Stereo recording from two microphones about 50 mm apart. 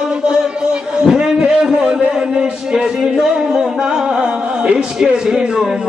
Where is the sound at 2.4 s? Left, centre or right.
Centre.